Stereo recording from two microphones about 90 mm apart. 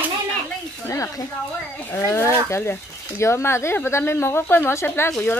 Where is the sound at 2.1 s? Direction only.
30° left (ahead or behind).